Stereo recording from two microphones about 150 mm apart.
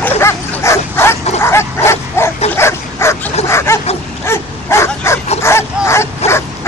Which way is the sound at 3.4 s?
20° left (ahead or behind).